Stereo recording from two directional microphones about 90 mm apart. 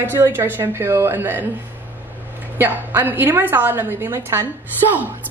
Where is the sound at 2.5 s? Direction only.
25° right (ahead or behind).